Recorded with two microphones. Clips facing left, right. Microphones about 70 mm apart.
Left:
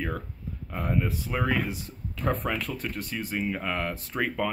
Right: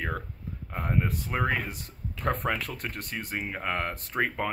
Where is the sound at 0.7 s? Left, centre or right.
Right.